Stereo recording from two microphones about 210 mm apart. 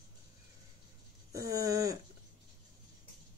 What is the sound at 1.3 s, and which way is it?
Speech, 15° right (ahead or behind).